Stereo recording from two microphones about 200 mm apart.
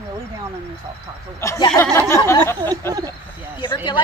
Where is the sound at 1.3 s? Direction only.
15° left (ahead or behind).